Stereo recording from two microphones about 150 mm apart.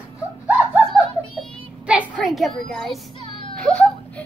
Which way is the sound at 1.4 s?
10° right (ahead or behind).